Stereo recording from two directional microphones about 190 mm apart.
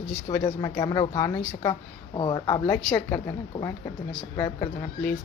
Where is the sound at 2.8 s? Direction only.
5° left (ahead or behind).